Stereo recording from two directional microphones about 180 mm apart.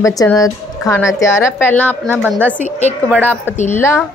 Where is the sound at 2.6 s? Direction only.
40° left (ahead or behind).